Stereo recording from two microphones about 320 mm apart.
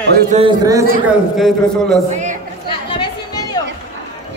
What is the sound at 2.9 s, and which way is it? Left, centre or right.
Chatter, centre.